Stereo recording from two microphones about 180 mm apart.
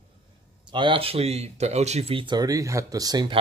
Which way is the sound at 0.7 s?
30° right (ahead or behind).